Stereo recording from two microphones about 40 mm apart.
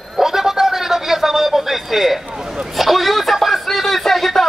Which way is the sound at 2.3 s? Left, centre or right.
Right.